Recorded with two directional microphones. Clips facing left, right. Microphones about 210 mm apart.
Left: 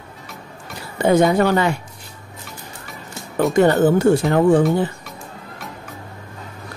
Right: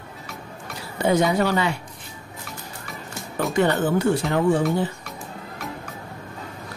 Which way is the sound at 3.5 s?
45° left (ahead or behind).